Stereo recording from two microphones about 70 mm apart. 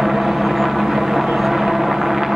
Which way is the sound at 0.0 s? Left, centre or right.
Centre.